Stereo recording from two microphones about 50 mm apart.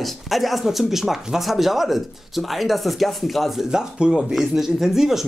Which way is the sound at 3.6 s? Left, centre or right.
Centre.